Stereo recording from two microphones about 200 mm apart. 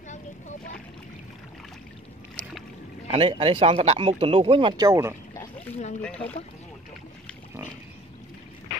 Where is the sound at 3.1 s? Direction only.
30° right (ahead or behind).